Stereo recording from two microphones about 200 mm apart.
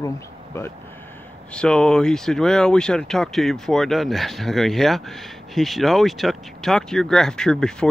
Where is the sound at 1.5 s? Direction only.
5° left (ahead or behind).